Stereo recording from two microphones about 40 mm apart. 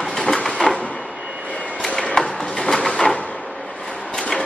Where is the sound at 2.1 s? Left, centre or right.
Left.